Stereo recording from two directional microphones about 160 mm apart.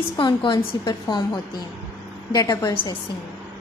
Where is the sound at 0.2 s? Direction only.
30° left (ahead or behind).